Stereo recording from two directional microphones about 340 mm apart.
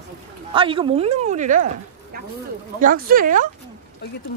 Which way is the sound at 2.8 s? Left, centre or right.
Right.